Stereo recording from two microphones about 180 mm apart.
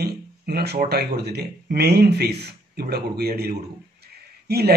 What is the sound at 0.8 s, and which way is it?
Speech, 65° right (ahead or behind).